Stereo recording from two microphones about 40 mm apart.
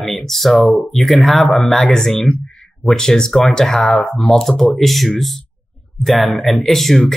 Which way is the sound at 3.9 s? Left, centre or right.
Left.